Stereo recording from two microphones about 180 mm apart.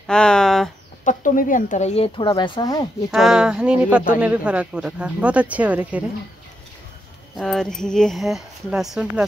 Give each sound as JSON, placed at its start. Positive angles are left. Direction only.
{"t": 0.0, "sound": "speech", "side_deg": 5}
{"t": 1.0, "sound": "speech", "side_deg": 45}
{"t": 3.1, "sound": "speech", "side_deg": -5}
{"t": 7.3, "sound": "speech", "side_deg": 5}